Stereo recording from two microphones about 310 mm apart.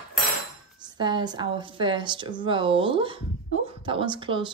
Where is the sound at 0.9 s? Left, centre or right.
Centre.